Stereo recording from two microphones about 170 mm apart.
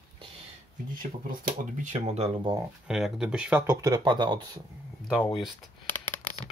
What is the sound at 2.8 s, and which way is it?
Speech, 5° right (ahead or behind).